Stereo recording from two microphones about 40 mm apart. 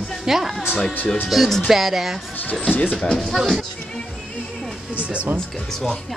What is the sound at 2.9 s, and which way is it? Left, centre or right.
Speech, centre.